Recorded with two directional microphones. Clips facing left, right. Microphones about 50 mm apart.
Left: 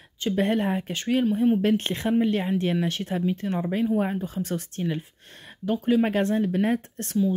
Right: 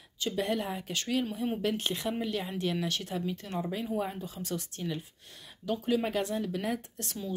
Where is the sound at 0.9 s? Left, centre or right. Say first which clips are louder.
Left 7 dB; left.